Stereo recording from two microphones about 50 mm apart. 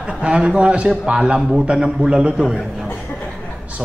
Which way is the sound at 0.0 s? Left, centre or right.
Right.